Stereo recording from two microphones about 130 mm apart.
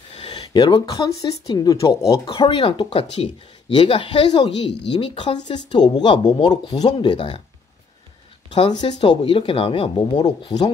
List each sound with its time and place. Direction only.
0.3 s speech: 35° left (ahead or behind)
2.3 s speech: 40° left (ahead or behind)
8.5 s speech: 35° left (ahead or behind)